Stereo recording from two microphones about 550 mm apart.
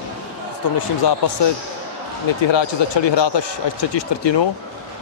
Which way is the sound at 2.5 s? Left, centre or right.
Left.